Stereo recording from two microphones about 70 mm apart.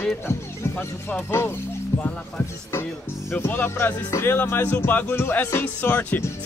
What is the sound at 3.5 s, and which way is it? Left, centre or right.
Speech, left.